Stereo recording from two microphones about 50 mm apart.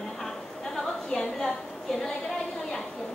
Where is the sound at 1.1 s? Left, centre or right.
Centre.